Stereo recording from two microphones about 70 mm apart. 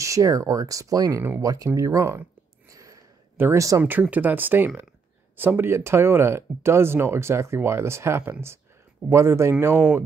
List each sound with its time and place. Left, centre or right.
0.0 s speech: right
1.8 s speech: right
2.7 s sniff: right
3.5 s speech: right
3.8 s speech: right